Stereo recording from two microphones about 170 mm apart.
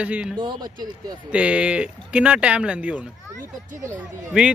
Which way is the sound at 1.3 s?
5° right (ahead or behind).